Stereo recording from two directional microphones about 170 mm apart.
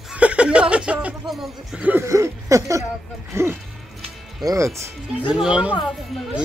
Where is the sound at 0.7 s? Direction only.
5° right (ahead or behind).